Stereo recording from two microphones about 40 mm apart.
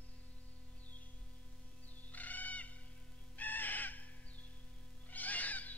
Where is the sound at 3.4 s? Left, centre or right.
Left.